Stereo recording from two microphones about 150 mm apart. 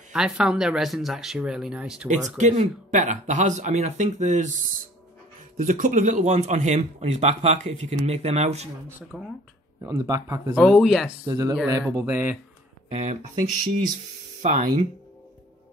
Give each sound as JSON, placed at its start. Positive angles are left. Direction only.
{"t": 0.1, "sound": "speech", "side_deg": -5}
{"t": 2.0, "sound": "speech", "side_deg": -50}
{"t": 5.6, "sound": "speech", "side_deg": -55}
{"t": 9.1, "sound": "speech", "side_deg": -10}
{"t": 9.8, "sound": "speech", "side_deg": -25}
{"t": 10.5, "sound": "speech", "side_deg": 0}
{"t": 11.2, "sound": "speech", "side_deg": -25}
{"t": 12.9, "sound": "speech", "side_deg": -50}
{"t": 14.4, "sound": "speech", "side_deg": -55}